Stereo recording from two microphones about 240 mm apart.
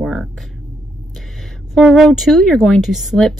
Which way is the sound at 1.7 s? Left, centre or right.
Centre.